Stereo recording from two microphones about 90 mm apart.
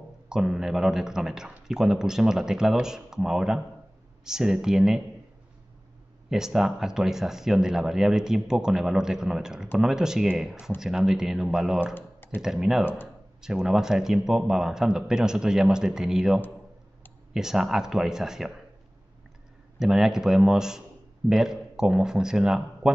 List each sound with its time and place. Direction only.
0.3 s speech: 5° right (ahead or behind)
6.3 s speech: 5° right (ahead or behind)
11.9 s typing: 20° left (ahead or behind)
12.4 s speech: 5° right (ahead or behind)
12.8 s speech: 20° left (ahead or behind)
13.4 s speech: 5° right (ahead or behind)
19.8 s speech: 5° right (ahead or behind)